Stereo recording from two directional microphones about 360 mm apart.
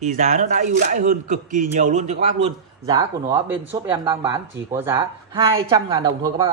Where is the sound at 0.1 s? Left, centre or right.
Right.